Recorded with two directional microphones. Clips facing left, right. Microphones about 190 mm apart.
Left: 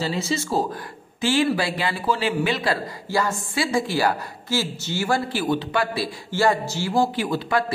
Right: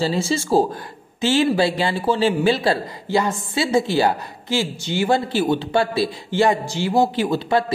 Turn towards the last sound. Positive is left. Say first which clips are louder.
# right 4 dB
turn(degrees=-25)  # may be behind; listen again after turning